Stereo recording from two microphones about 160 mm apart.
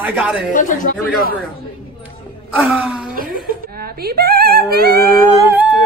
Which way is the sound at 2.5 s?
5° right (ahead or behind).